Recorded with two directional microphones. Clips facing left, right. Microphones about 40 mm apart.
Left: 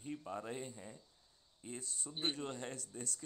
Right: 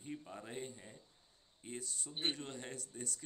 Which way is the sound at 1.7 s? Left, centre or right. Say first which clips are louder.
Right 3 dB; right.